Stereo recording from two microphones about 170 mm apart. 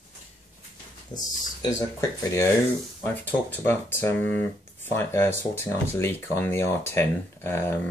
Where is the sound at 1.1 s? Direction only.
20° left (ahead or behind).